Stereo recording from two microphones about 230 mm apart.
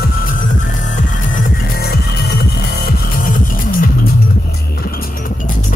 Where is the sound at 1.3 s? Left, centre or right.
Left.